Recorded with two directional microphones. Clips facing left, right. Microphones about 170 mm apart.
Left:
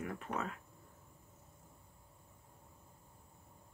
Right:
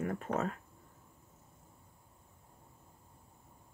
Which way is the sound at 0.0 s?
45° right (ahead or behind).